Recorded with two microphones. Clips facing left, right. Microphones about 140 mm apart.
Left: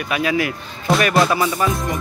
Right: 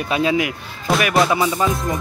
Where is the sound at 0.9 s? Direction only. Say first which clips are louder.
Left 1 dB; centre (ahead or behind).